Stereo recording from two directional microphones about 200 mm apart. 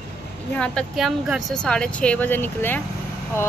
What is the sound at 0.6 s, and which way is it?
Speech, centre (ahead or behind).